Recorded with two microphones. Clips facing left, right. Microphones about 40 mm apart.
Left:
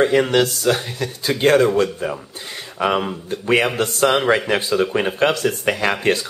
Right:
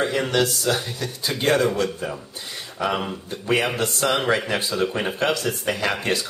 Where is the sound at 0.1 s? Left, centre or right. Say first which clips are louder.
Left 5 dB; left.